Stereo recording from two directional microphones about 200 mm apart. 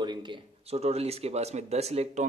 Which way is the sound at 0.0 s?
20° right (ahead or behind).